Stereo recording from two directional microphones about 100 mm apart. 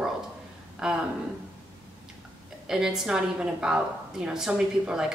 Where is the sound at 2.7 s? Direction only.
5° right (ahead or behind).